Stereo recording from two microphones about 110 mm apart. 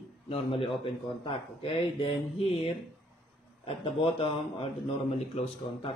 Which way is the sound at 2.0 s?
70° left (ahead or behind).